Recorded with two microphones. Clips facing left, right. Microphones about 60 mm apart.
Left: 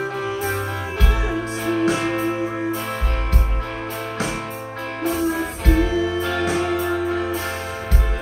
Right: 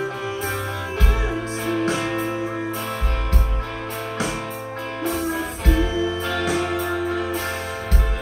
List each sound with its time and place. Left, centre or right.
1.7 s music: left
5.3 s music: left